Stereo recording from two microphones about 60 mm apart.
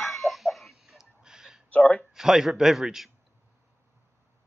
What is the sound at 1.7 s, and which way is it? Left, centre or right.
Speech, left.